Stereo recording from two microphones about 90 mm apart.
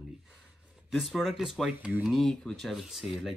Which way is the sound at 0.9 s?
5° right (ahead or behind).